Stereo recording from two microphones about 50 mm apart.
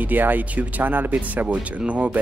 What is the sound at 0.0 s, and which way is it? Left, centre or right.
Speech, right.